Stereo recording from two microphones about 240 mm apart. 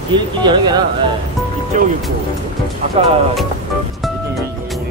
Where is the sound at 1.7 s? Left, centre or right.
Right.